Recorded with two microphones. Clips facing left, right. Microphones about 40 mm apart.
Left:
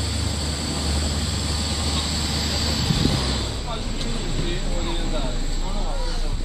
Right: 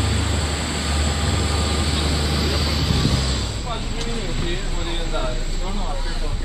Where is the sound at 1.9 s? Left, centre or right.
Right; by 3.3 s centre.